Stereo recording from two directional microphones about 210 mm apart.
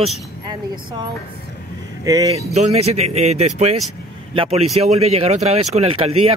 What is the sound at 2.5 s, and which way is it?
Speech, 30° right (ahead or behind).